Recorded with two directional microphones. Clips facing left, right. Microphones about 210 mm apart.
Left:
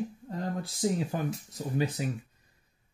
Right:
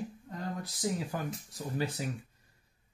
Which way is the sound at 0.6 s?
25° left (ahead or behind).